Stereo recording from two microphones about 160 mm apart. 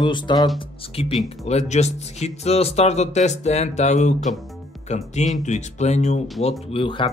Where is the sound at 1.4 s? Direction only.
45° left (ahead or behind).